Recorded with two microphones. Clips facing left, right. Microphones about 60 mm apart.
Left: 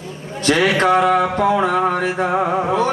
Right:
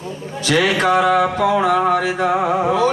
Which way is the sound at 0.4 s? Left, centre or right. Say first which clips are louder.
Left 1 dB; left.